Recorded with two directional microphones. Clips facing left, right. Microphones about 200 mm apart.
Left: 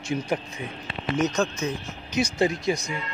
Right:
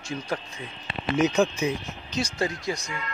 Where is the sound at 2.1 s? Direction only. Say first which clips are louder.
Left 5 dB; 20° left (ahead or behind).